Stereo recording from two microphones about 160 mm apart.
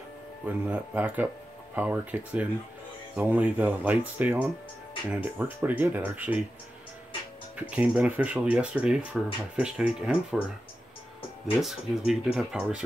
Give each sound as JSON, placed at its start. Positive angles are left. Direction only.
{"t": 0.5, "sound": "speech", "side_deg": -10}
{"t": 7.5, "sound": "speech", "side_deg": -10}
{"t": 11.6, "sound": "speech", "side_deg": -5}